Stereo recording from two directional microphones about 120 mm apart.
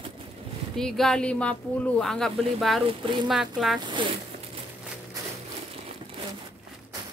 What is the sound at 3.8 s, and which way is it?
Speech, 40° right (ahead or behind).